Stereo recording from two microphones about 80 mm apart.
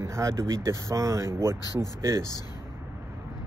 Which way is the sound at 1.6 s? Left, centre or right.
Left.